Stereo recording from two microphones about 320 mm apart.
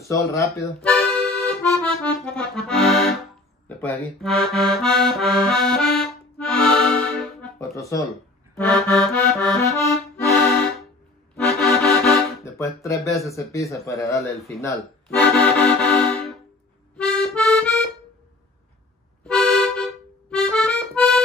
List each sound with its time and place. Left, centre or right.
0.0 s speech: centre
1.9 s accordion: centre
3.6 s speech: centre
8.7 s accordion: centre
17.0 s music: centre
19.2 s accordion: centre